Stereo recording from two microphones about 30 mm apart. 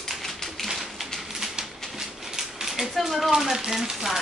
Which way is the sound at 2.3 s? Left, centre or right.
Centre.